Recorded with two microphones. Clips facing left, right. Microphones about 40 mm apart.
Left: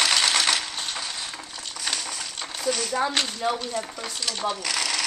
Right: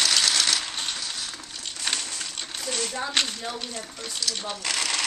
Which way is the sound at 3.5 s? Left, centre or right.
Left.